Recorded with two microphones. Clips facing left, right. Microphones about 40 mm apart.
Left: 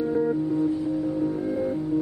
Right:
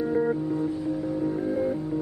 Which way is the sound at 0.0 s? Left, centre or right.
Centre.